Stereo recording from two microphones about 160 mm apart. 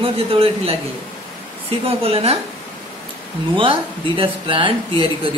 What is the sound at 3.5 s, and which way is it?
Speech, 35° right (ahead or behind).